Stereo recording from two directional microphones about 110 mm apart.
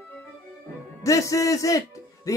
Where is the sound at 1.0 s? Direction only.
30° left (ahead or behind).